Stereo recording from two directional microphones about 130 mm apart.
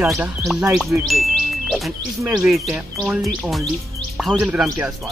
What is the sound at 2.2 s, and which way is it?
Speech, centre (ahead or behind).